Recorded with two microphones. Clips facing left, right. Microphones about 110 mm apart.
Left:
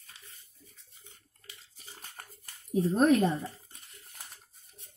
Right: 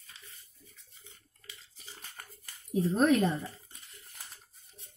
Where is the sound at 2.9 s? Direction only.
35° left (ahead or behind).